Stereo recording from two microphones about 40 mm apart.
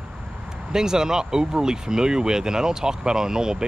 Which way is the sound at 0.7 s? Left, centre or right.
Centre.